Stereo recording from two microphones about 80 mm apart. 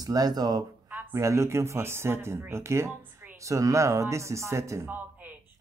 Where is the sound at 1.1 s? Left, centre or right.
Right.